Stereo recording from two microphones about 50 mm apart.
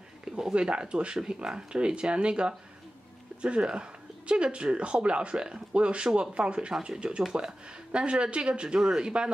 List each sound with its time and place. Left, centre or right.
0.2 s speech: centre
6.7 s speech: centre
7.0 s speech: centre